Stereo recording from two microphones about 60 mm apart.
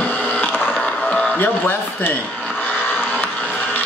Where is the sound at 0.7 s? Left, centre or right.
Left.